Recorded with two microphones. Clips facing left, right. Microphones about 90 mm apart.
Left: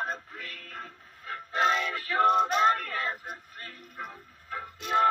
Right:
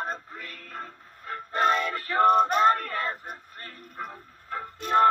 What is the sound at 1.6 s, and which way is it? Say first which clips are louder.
Male singing: right 2 dB; 45° right (ahead or behind).